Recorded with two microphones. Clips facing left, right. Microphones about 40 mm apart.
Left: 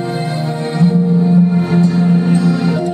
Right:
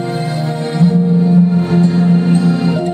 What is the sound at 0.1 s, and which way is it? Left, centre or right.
Music, centre.